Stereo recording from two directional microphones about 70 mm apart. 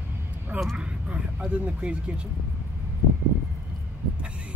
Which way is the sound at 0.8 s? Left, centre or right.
Centre.